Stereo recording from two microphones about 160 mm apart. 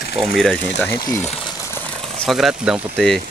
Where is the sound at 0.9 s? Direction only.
25° left (ahead or behind).